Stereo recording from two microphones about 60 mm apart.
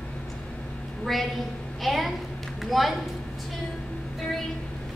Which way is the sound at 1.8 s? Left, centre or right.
Centre.